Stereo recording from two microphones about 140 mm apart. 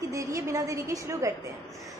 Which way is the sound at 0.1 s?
25° right (ahead or behind).